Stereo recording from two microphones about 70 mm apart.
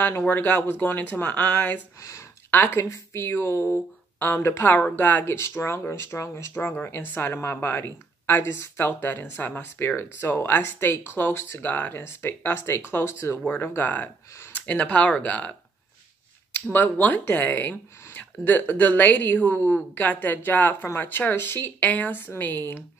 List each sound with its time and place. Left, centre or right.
0.3 s speech: left
2.0 s a woman's voice: left
2.5 s speech: left
2.8 s a woman's voice: left
6.5 s speech: left
13.5 s speech: left
16.7 s speech: left